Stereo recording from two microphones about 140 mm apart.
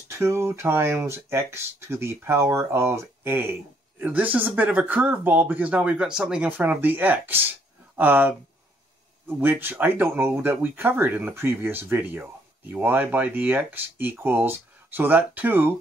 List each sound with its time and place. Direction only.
0.1 s speech: 20° right (ahead or behind)
9.4 s speech: 15° right (ahead or behind)